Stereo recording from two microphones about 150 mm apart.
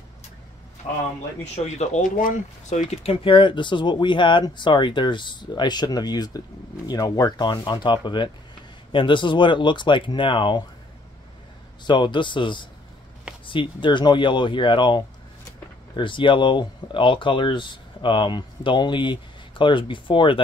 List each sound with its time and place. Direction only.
0.8 s speech: 45° left (ahead or behind)
11.8 s speech: 30° left (ahead or behind)